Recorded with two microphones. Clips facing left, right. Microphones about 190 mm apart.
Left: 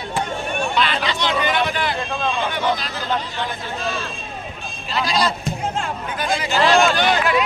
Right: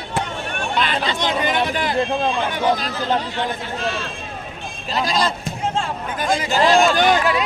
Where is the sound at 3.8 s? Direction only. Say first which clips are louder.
Right 1 dB; 65° right (ahead or behind).